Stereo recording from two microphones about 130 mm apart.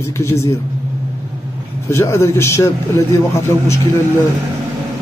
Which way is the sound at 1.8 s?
20° left (ahead or behind).